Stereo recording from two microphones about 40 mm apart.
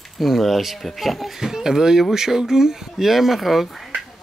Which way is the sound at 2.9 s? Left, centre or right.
Centre.